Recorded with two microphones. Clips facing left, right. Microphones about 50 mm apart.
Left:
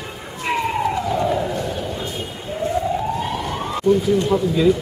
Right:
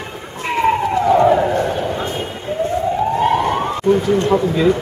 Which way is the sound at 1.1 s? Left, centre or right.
Right.